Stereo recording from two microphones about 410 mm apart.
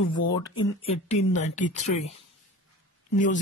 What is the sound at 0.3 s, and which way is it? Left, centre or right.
Speech, centre.